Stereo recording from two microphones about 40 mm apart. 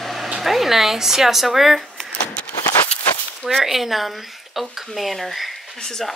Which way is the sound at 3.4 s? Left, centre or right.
Centre.